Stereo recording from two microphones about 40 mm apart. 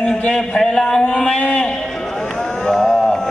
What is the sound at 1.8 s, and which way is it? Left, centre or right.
Music, centre.